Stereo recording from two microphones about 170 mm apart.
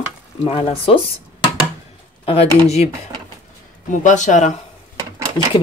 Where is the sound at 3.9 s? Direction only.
45° left (ahead or behind).